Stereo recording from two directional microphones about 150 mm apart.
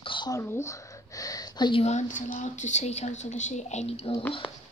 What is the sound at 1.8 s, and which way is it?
A woman's voice, 50° left (ahead or behind).